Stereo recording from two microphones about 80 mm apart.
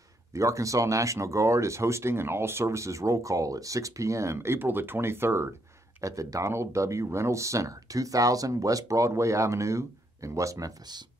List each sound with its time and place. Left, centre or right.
0.3 s speech: right
5.9 s speech: right